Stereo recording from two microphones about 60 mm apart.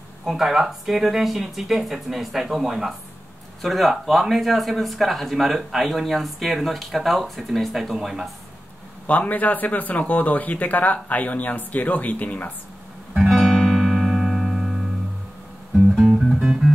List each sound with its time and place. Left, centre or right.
0.2 s speech: centre
9.0 s speech: left
13.3 s music: centre
16.0 s music: centre